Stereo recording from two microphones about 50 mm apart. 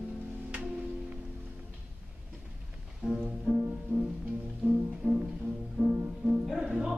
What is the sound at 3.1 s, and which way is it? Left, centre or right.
Music, centre.